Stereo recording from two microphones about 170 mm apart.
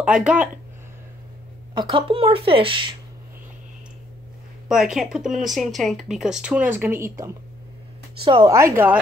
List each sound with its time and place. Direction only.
0.0 s speech: 5° right (ahead or behind)
1.8 s speech: 30° right (ahead or behind)
4.6 s speech: 5° right (ahead or behind)
8.5 s speech: 20° right (ahead or behind)